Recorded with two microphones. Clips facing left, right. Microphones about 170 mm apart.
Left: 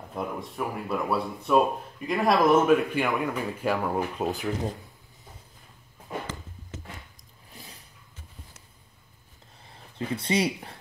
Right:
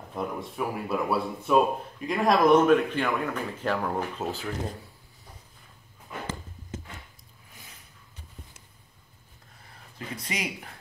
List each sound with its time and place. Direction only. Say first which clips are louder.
0.1 s speech: right 1 dB; centre (ahead or behind); by 4.5 s 15° left (ahead or behind)
7.5 s vehicle: left 5 dB; 35° left (ahead or behind)
9.9 s speech: left 9 dB; 30° left (ahead or behind)